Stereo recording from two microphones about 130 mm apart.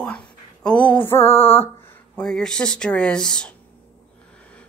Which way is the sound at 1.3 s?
50° left (ahead or behind).